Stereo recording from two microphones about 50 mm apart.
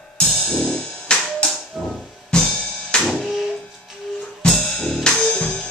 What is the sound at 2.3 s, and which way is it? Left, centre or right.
Music, centre.